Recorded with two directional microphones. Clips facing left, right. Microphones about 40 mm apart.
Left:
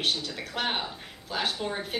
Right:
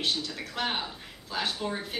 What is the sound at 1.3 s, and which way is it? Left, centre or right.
Speech, centre.